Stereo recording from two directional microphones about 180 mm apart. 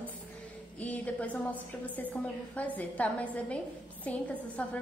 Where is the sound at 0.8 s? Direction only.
10° left (ahead or behind).